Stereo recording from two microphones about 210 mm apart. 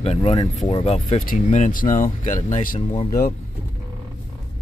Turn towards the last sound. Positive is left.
turn(degrees=35)  # may be behind; listen again after turning